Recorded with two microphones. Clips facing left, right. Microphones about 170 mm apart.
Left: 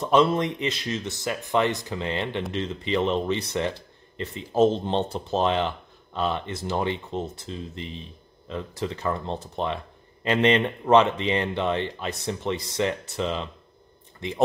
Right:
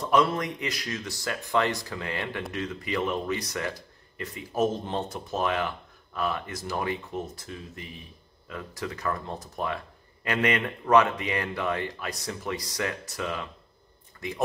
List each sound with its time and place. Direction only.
0.0 s speech: 25° left (ahead or behind)